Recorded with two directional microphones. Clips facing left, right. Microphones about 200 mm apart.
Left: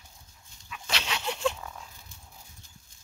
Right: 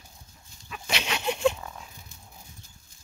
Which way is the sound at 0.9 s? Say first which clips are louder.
Right 4 dB; 15° right (ahead or behind).